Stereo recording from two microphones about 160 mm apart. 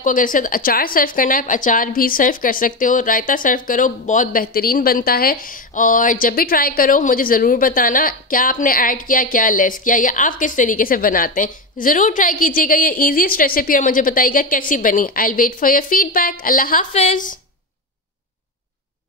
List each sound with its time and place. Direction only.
0.0 s a woman's voice: 55° left (ahead or behind)
16.9 s a woman's voice: 50° left (ahead or behind)